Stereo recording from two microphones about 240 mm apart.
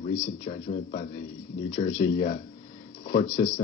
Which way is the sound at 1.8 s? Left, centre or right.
Left.